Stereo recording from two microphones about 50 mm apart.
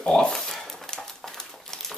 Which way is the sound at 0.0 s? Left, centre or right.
Centre.